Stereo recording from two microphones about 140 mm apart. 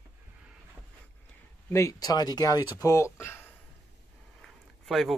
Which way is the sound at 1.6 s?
20° left (ahead or behind).